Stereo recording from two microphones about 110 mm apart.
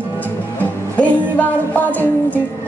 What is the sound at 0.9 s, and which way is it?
Music, 15° left (ahead or behind).